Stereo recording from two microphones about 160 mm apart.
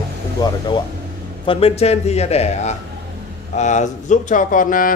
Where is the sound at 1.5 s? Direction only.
40° left (ahead or behind); by 4.9 s 55° left (ahead or behind).